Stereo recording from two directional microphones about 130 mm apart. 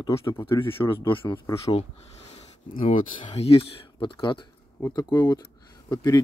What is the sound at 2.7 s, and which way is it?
Speech, 80° left.